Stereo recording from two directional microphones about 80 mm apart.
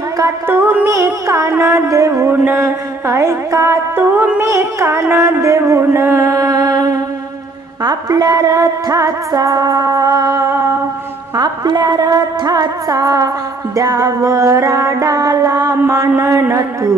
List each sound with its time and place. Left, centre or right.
0.5 s music: right
0.8 s music: right
6.2 s mantra: right
7.8 s music: right
11.3 s music: right